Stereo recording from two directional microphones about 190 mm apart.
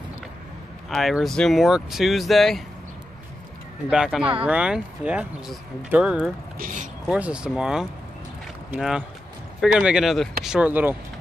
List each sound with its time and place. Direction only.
0.8 s speech: centre (ahead or behind)
3.9 s speech: 5° right (ahead or behind)
6.6 s speech: 40° right (ahead or behind)
7.1 s speech: 5° right (ahead or behind)